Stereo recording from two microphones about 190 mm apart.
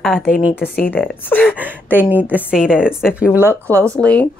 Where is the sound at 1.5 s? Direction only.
10° right (ahead or behind).